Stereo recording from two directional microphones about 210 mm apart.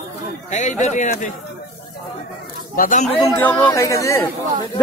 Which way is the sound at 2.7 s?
40° left (ahead or behind).